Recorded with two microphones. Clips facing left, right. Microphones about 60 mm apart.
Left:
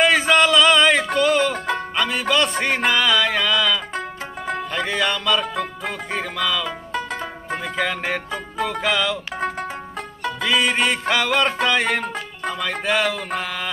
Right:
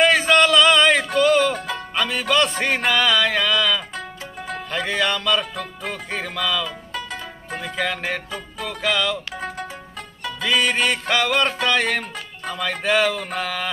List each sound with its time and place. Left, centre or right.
0.0 s a sound: centre
1.1 s music: centre
1.5 s music: left
2.1 s music: centre
7.2 s zither: left
7.6 s music: centre
8.3 s music: left
10.4 s music: centre
12.8 s mantra: centre